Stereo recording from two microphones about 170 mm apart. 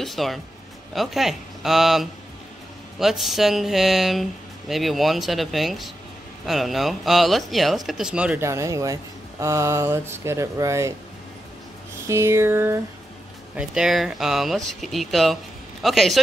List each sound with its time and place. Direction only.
0.0 s speech: centre (ahead or behind); by 11.0 s 15° right (ahead or behind)
12.1 s speech: 15° right (ahead or behind)
13.6 s speech: 5° right (ahead or behind)